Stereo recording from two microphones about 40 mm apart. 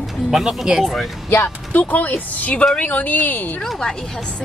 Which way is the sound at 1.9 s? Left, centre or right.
Left.